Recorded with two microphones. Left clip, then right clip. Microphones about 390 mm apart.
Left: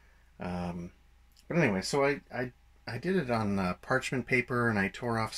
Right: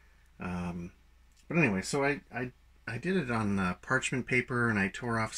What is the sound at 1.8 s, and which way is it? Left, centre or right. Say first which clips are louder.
Speech: left 2 dB; centre.